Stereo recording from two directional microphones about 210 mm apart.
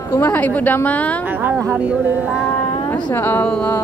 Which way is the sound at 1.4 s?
10° right (ahead or behind).